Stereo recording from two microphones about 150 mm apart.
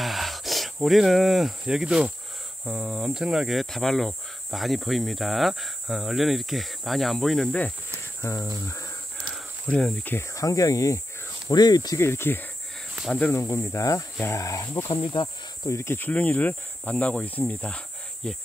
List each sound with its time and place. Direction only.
0.0 s cricket: centre (ahead or behind)
2.6 s speech: 5° right (ahead or behind)
8.2 s speech: 20° left (ahead or behind)
8.6 s a sound: 20° left (ahead or behind)
9.3 s speech: 5° left (ahead or behind); by 15.7 s 30° left (ahead or behind)
15.7 s speech: 15° left (ahead or behind)